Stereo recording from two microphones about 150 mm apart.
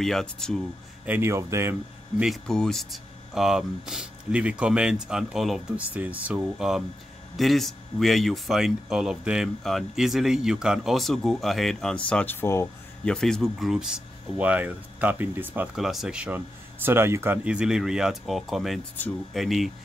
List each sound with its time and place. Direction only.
0.0 s speech: 5° left (ahead or behind)
1.0 s speech: 15° right (ahead or behind)
2.2 s speech: 5° left (ahead or behind)
13.0 s speech: 5° left (ahead or behind)